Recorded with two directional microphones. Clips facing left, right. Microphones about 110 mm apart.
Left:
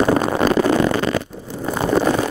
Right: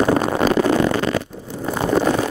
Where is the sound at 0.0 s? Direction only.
20° left (ahead or behind).